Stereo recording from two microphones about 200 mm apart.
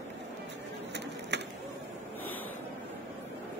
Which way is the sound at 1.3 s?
60° right (ahead or behind).